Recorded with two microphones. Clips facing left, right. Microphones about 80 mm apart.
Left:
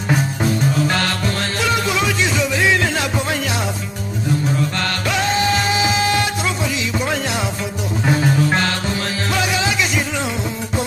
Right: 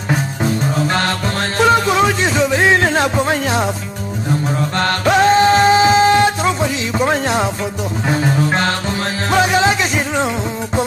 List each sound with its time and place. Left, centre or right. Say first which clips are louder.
0.8 s music: right 2 dB; right
4.7 s music: right 7 dB; right
9.3 s music: right 8 dB; right